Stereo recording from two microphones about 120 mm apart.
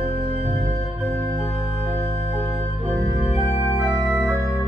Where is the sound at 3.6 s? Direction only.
20° right (ahead or behind).